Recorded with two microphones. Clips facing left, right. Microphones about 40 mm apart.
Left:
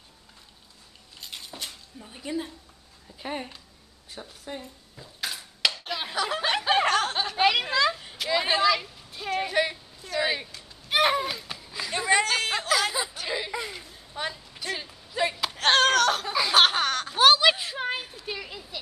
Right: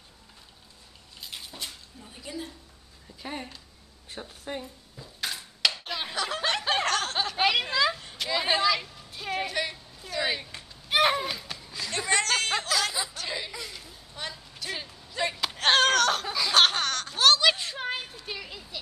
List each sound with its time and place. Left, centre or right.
1.2 s cutlery: centre
3.2 s speech: centre
4.2 s a woman's voice: centre
4.9 s dishes: centre
5.9 s snicker: centre
9.5 s a sound: centre
13.6 s a sound: left
14.7 s slap: centre
16.3 s a sound: centre